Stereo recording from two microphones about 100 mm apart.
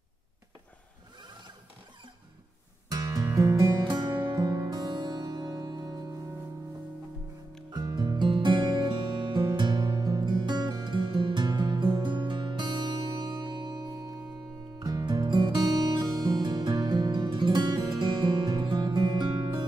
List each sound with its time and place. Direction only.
2.9 s music: 40° right (ahead or behind)
4.3 s music: 40° right (ahead or behind)
7.7 s music: 45° right (ahead or behind)